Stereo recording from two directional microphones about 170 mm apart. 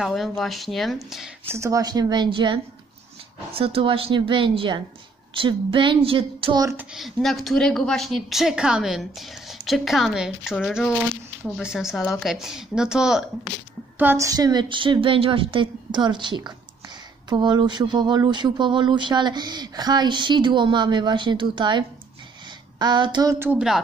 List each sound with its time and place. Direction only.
0.0 s a woman's voice: centre (ahead or behind)
1.5 s a woman's voice: 20° right (ahead or behind)
6.9 s a woman's voice: centre (ahead or behind)
13.9 s speech: 15° right (ahead or behind)
23.4 s speech: 5° right (ahead or behind)